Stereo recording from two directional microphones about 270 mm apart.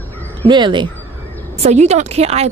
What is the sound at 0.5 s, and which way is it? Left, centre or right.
Speech, centre.